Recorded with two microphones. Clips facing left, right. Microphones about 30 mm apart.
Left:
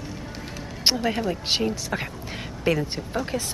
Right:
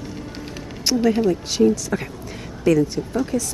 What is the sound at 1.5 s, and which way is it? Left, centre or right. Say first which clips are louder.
Speech: right 7 dB; left.